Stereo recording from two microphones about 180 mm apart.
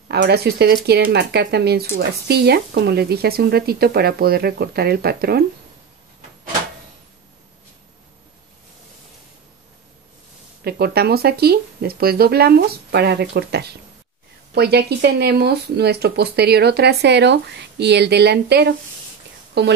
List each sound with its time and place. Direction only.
0.1 s speech: 65° right (ahead or behind)
10.6 s speech: 60° right (ahead or behind)